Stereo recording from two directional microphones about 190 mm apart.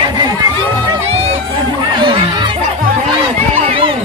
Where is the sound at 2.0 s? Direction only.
25° right (ahead or behind).